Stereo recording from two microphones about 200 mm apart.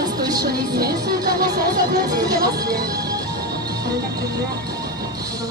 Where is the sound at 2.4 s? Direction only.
50° right (ahead or behind).